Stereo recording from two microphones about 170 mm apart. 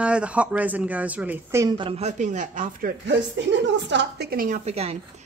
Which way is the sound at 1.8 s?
35° right (ahead or behind).